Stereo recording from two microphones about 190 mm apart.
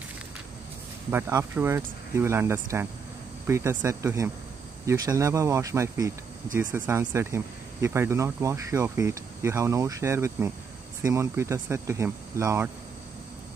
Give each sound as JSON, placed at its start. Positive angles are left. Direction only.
{"t": 1.1, "sound": "speech", "side_deg": -10}